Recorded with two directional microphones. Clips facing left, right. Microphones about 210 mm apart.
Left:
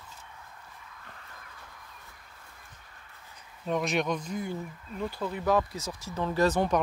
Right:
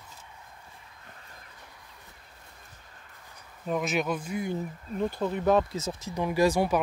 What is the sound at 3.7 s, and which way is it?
Speech, 5° right (ahead or behind).